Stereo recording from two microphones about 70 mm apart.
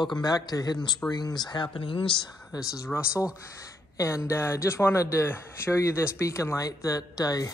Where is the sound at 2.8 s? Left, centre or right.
Left.